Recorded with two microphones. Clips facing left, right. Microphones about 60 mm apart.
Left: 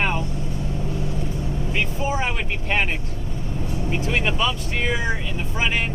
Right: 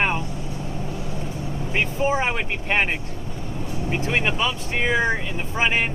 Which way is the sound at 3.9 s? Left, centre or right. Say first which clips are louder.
Right 1 dB; right.